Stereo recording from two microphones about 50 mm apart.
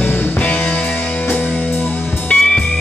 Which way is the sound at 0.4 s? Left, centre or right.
Left.